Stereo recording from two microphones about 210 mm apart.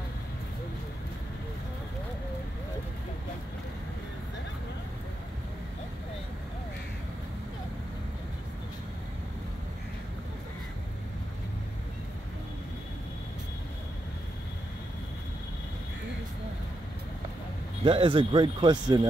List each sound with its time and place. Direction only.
17.8 s speech: 25° right (ahead or behind)